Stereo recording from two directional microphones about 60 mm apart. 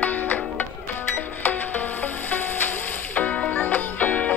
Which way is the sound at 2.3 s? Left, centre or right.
Left.